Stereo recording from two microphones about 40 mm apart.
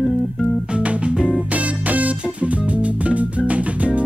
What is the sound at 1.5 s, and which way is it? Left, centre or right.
Music, right.